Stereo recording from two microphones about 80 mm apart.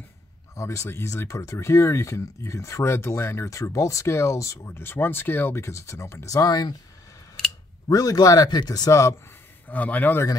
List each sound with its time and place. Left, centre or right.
0.6 s speech: left
7.9 s speech: left
9.7 s a man's voice: centre